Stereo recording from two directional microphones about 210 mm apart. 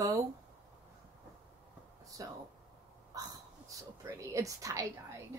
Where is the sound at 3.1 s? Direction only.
15° right (ahead or behind).